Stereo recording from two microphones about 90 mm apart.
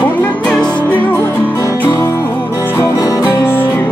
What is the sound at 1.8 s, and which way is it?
Music, 25° left (ahead or behind).